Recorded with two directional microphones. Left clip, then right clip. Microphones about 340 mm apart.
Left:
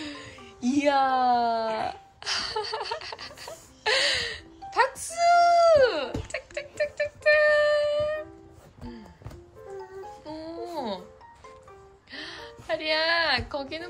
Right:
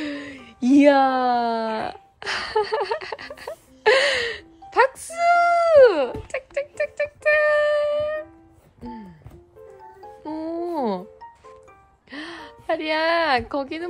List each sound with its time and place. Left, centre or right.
0.0 s music: right
10.2 s music: centre
12.1 s music: right